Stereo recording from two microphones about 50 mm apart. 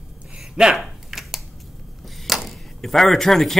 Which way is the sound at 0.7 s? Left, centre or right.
Centre.